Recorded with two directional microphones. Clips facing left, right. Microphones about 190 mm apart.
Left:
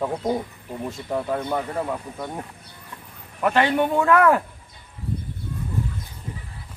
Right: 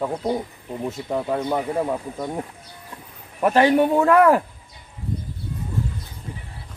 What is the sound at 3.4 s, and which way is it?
A man's voice, 40° right (ahead or behind).